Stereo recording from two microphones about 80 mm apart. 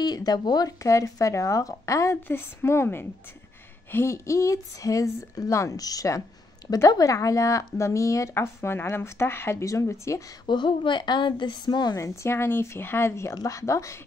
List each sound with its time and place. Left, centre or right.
0.0 s speech: left
0.8 s a woman's voice: left
10.4 s a woman's voice: left
11.9 s speech: left
13.3 s speech: left